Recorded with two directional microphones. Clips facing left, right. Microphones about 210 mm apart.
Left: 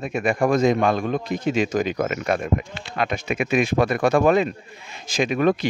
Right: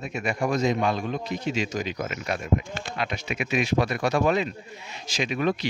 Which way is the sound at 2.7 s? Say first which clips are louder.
Right 2 dB; 45° right (ahead or behind).